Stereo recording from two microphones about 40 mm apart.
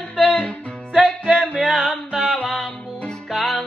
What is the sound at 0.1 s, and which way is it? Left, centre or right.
Music, left.